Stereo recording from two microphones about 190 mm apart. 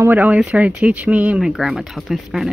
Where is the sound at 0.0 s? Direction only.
10° right (ahead or behind).